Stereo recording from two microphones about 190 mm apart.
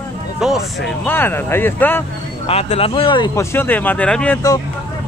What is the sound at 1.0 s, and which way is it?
Speech, 10° left (ahead or behind).